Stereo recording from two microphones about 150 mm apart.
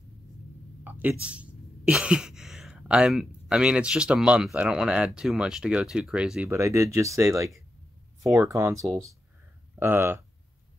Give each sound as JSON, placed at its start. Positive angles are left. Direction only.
{"t": 0.8, "sound": "speech", "side_deg": -10}
{"t": 6.5, "sound": "speech", "side_deg": -20}